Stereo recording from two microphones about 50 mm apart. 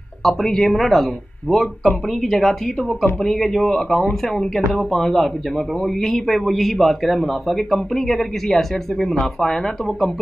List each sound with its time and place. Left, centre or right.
0.2 s a man's voice: centre